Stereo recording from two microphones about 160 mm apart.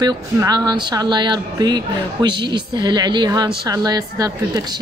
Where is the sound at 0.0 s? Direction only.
25° right (ahead or behind).